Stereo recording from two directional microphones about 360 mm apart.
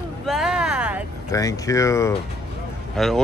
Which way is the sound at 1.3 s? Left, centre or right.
Centre.